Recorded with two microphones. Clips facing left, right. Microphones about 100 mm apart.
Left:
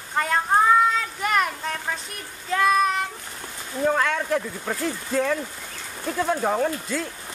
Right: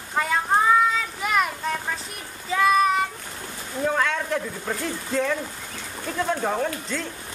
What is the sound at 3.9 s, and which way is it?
Speech, centre (ahead or behind).